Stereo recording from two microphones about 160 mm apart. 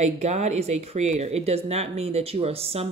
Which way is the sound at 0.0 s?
45° right (ahead or behind).